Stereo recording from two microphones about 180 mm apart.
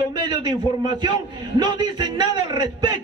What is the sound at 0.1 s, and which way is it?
A man's voice, 25° right (ahead or behind).